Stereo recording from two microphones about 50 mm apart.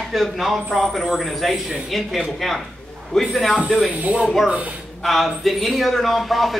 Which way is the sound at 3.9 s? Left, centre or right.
Right.